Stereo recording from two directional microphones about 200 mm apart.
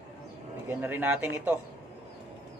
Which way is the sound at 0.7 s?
10° right (ahead or behind).